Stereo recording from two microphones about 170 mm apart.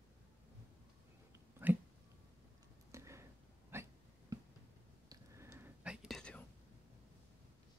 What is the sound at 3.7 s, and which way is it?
Hiccup, 15° right (ahead or behind).